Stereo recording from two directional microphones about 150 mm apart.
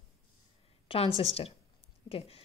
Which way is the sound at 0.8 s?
40° left (ahead or behind).